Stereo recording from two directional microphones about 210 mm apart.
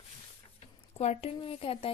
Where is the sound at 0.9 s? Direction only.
30° left (ahead or behind).